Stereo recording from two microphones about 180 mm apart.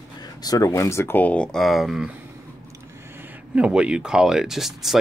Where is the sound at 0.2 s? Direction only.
20° left (ahead or behind); by 2.1 s centre (ahead or behind).